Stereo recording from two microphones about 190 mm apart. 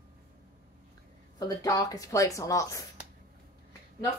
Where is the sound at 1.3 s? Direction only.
20° left (ahead or behind).